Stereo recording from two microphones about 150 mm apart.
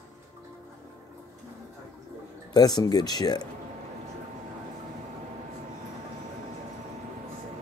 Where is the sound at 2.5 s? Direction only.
25° left (ahead or behind).